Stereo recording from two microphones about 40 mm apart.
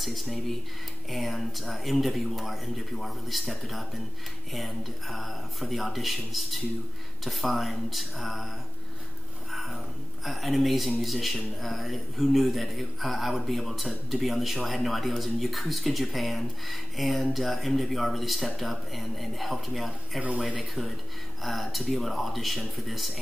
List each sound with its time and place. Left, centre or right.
0.0 s a man's voice: centre
10.2 s a man's voice: centre
20.2 s speech: right
21.4 s a man's voice: centre